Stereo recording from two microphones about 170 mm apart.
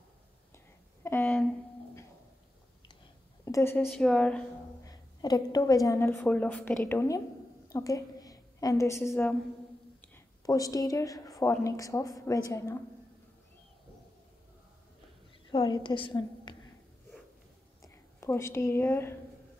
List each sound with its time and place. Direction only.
1.0 s a sound: 10° left (ahead or behind)
3.4 s a woman's voice: 15° left (ahead or behind)
3.8 s a woman's voice: 5° left (ahead or behind)
4.8 s a woman's voice: 25° left (ahead or behind)
7.7 s a sound: 20° left (ahead or behind)
9.1 s a woman's voice: 5° left (ahead or behind)
10.0 s a woman's voice: 15° left (ahead or behind)
15.5 s a woman's voice: 30° left (ahead or behind)
17.8 s a woman's voice: 15° left (ahead or behind)